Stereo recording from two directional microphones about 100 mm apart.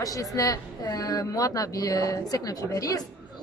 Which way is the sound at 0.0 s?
35° left (ahead or behind).